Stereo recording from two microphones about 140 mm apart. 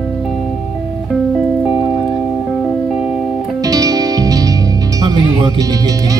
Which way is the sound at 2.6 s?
5° right (ahead or behind).